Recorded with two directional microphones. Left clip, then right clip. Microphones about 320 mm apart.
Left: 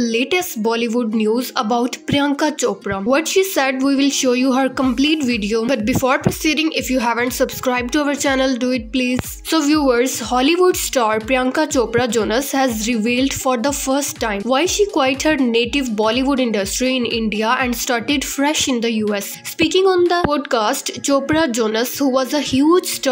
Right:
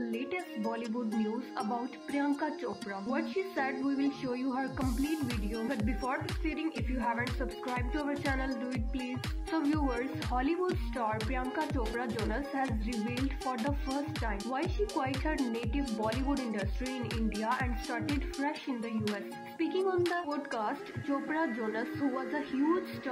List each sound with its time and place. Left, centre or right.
0.0 s a woman's voice: right
14.2 s a woman's voice: right